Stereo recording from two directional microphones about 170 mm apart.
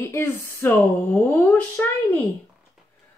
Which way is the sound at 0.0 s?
15° left (ahead or behind).